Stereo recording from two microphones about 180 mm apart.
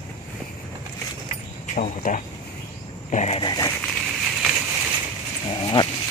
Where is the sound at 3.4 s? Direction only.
25° left (ahead or behind).